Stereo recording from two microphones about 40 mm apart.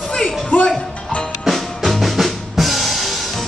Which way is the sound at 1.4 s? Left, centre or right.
Centre.